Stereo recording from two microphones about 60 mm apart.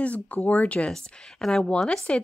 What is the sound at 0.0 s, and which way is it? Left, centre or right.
Speech, left.